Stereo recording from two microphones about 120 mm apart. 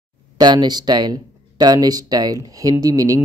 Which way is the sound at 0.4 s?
35° right (ahead or behind).